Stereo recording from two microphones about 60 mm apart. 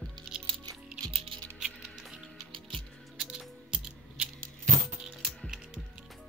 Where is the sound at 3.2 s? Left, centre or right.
Centre.